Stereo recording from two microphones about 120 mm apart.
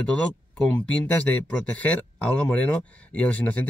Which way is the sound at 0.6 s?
10° left (ahead or behind).